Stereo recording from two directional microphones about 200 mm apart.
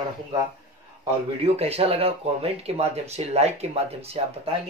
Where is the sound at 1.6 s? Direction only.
30° right (ahead or behind).